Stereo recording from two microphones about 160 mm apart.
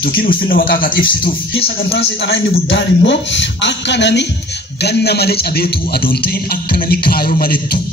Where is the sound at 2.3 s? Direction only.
90° left; by 6.2 s 75° left (ahead or behind).